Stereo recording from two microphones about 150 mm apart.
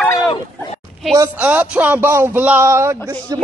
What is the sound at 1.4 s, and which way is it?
A man's voice, 10° right (ahead or behind).